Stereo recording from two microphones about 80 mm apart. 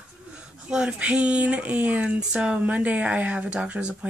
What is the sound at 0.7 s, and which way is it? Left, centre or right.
Speech, centre.